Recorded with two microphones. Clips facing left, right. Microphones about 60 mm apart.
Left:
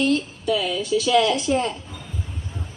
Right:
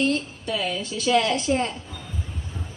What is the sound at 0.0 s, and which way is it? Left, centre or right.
A woman's voice, right.